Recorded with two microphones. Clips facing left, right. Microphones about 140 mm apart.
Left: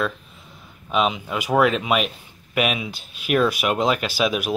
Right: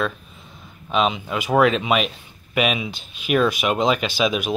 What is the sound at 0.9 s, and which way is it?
Speech, 5° left (ahead or behind).